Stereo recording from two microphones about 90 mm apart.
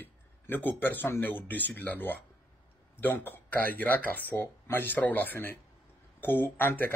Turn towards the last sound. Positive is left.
turn(degrees=25)  # may be behind; listen again after turning